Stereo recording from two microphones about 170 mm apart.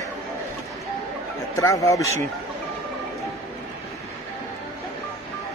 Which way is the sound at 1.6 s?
20° left (ahead or behind).